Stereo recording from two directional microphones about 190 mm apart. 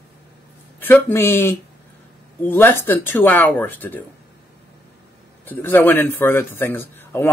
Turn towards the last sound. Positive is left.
turn(degrees=10)  # may be behind; listen again after turning